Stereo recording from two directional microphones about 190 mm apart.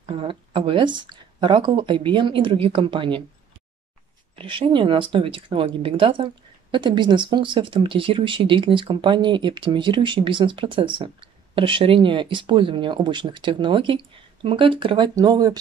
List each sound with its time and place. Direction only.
0.0 s speech: 30° right (ahead or behind)
4.4 s speech: 25° right (ahead or behind)